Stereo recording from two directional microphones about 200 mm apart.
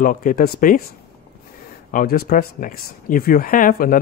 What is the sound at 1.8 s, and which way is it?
Speech, 45° left (ahead or behind).